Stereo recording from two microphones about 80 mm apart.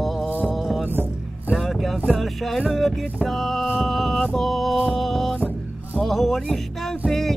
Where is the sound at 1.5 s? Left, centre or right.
Centre.